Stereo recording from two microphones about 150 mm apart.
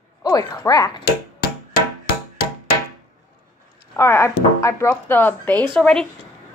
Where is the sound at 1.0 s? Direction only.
90° left.